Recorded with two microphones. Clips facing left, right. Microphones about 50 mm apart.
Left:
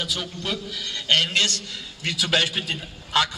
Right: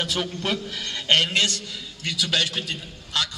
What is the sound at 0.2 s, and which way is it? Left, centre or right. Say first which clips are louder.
A man's voice: right 3 dB; right.